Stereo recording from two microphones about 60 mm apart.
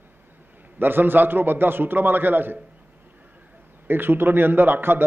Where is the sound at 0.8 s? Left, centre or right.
Right.